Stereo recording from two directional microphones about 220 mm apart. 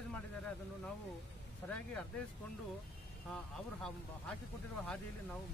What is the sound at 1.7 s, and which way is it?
Speech, 5° left (ahead or behind).